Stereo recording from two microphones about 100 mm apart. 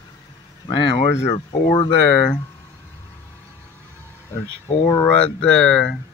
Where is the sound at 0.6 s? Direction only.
55° left (ahead or behind).